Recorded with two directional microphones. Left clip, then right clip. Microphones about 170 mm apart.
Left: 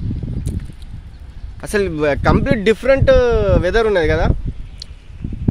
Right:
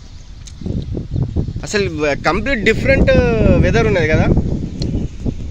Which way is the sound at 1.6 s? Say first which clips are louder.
Left 1 dB; centre (ahead or behind).